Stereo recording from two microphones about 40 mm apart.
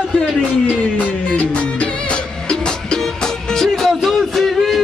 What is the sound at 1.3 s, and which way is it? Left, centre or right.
Music, left.